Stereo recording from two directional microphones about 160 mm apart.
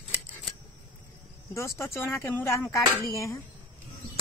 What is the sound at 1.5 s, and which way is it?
Speech, 20° left (ahead or behind).